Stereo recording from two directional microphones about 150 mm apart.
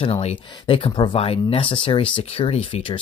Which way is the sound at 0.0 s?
40° left (ahead or behind).